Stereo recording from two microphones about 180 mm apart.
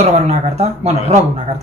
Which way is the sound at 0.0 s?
35° right (ahead or behind).